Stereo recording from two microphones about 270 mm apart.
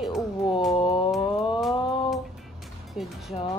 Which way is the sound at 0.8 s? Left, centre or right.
Centre.